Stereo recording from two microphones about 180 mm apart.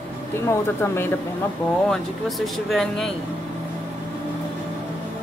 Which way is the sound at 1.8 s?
Centre (ahead or behind).